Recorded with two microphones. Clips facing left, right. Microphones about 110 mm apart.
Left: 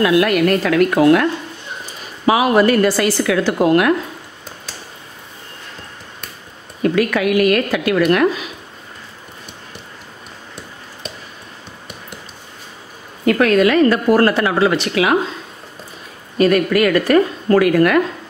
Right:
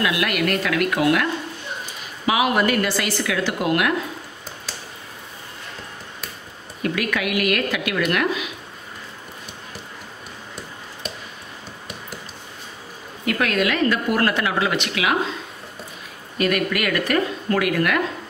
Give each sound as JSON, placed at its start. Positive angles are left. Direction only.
{"t": 0.0, "sound": "speech", "side_deg": 35}
{"t": 2.2, "sound": "speech", "side_deg": 40}
{"t": 6.8, "sound": "speech", "side_deg": 35}
{"t": 13.2, "sound": "speech", "side_deg": 40}
{"t": 16.3, "sound": "speech", "side_deg": 35}